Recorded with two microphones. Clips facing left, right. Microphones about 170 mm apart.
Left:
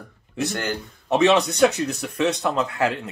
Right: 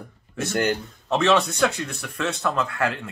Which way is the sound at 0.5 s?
20° right (ahead or behind).